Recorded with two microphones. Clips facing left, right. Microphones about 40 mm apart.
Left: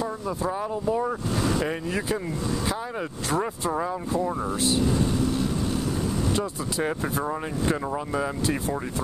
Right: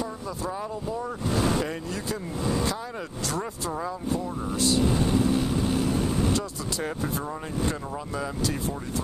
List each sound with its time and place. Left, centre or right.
0.0 s speech: left
3.3 s speech: left
4.9 s vehicle: centre
6.3 s speech: centre